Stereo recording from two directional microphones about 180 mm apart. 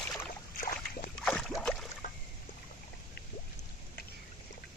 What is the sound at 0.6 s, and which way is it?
Boat, 50° left (ahead or behind).